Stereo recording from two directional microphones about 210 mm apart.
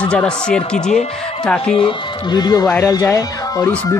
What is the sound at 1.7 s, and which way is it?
Speech, 25° left (ahead or behind).